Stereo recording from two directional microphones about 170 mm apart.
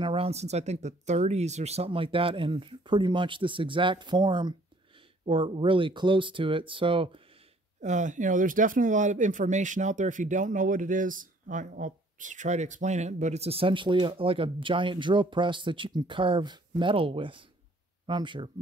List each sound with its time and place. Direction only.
0.0 s speech: 35° right (ahead or behind)
7.8 s speech: 45° right (ahead or behind); by 18.5 s 30° right (ahead or behind)